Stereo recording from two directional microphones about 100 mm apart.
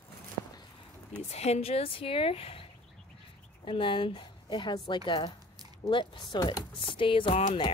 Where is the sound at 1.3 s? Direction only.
90° left; by 2.6 s 75° left (ahead or behind).